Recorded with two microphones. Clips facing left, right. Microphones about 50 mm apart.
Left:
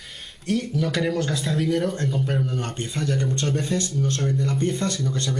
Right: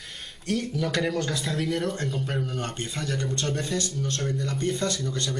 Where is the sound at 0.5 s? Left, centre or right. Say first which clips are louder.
Left 3 dB; centre.